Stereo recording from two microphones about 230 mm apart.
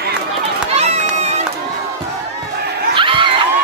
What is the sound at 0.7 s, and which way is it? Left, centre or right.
Run, right.